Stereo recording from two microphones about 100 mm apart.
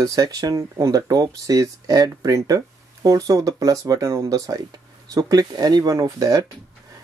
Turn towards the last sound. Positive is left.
turn(degrees=-35)  # may be behind; listen again after turning